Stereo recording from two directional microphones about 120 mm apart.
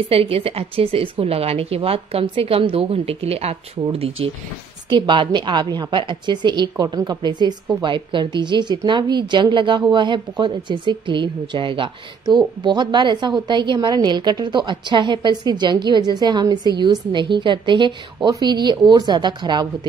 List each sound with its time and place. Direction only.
0.1 s a woman's voice: 55° right (ahead or behind)
4.8 s a woman's voice: 40° right (ahead or behind)